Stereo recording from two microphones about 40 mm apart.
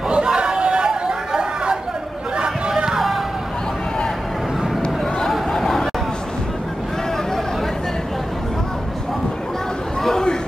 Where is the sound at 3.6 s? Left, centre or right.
Centre.